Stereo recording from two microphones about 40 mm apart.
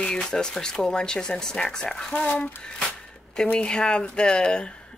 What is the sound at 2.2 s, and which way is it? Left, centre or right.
Speech, left.